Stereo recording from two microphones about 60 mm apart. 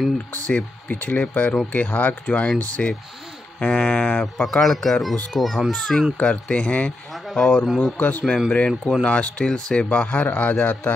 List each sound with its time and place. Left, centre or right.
0.5 s speech: left
4.5 s speech: centre
5.7 s speech: centre
7.6 s speech: centre
8.0 s speech: left
8.5 s speech: centre
9.8 s speech: left